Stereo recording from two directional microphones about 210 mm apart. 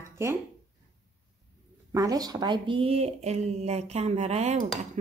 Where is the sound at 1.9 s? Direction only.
15° right (ahead or behind).